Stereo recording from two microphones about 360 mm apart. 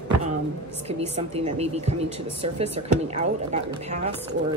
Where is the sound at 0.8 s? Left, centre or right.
Centre.